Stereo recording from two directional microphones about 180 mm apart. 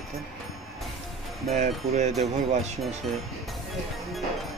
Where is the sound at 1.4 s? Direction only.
40° right (ahead or behind).